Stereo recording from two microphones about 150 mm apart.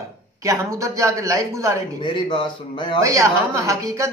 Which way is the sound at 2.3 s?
35° left (ahead or behind).